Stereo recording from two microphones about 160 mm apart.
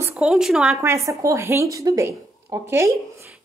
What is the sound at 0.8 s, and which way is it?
A woman's voice, 20° right (ahead or behind).